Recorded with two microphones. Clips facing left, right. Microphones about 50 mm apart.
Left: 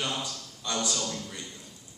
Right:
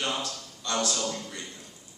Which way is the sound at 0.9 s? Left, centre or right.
Centre.